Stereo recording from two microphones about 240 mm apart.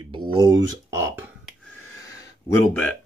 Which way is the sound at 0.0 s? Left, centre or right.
Centre.